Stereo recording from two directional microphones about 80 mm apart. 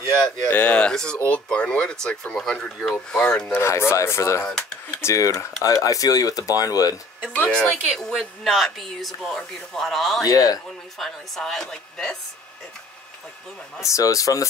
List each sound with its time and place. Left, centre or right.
0.5 s speech: centre
3.5 s speech: left
7.3 s a woman's voice: left
8.1 s speech: centre
10.2 s speech: left
11.0 s speech: centre
13.8 s speech: left